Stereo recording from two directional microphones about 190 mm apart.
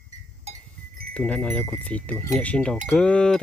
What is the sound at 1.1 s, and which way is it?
Speech, 5° left (ahead or behind).